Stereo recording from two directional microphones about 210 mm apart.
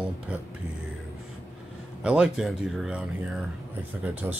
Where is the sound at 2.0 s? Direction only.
5° right (ahead or behind).